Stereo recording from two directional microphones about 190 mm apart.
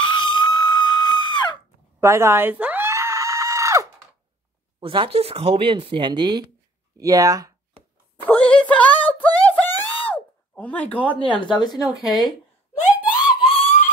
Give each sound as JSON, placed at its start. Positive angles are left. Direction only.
{"t": 0.0, "sound": "screaming", "side_deg": 25}
{"t": 2.0, "sound": "screaming", "side_deg": -15}
{"t": 4.7, "sound": "speech", "side_deg": -25}
{"t": 8.2, "sound": "a sound", "side_deg": 5}
{"t": 11.4, "sound": "a woman's voice", "side_deg": 20}
{"t": 11.9, "sound": "speech", "side_deg": 0}
{"t": 13.0, "sound": "screaming", "side_deg": -5}